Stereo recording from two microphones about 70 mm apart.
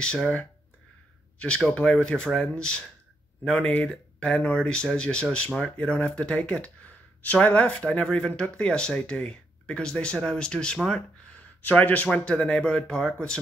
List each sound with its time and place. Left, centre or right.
0.0 s speech: centre
1.4 s speech: centre